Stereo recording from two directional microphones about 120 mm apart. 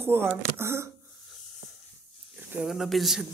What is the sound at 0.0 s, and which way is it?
Speech, 20° right (ahead or behind).